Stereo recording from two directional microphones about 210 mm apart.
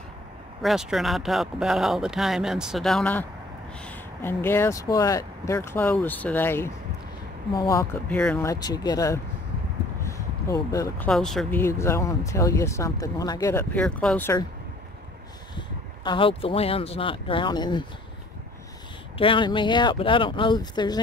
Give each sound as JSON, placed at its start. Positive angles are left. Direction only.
{"t": 0.6, "sound": "speech", "side_deg": 0}
{"t": 10.0, "sound": "a sound", "side_deg": 15}
{"t": 11.1, "sound": "speech", "side_deg": 0}
{"t": 11.6, "sound": "speech", "side_deg": 10}
{"t": 15.5, "sound": "speech", "side_deg": 20}
{"t": 19.1, "sound": "speech", "side_deg": 25}